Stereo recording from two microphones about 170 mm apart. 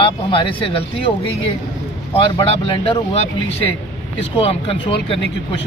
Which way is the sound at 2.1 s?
30° left (ahead or behind).